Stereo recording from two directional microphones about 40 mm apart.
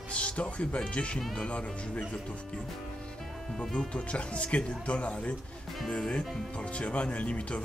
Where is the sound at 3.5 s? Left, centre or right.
Centre.